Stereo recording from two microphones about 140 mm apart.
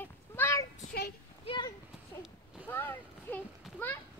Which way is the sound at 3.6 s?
Centre (ahead or behind).